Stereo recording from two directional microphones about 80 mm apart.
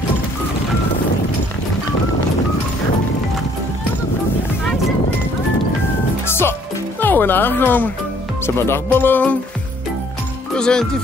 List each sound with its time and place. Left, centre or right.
6.2 s music: left
7.0 s speech: left
10.5 s speech: centre